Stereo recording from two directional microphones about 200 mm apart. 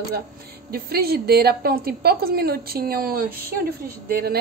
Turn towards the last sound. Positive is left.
turn(degrees=-50)  # may be behind; listen again after turning